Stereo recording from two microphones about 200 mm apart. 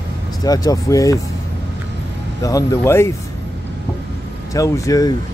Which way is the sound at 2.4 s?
15° left (ahead or behind).